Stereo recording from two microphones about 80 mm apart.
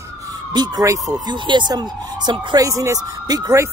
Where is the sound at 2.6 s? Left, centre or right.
Right.